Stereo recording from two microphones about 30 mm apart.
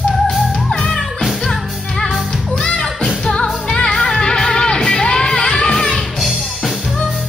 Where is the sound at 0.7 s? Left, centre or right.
Left.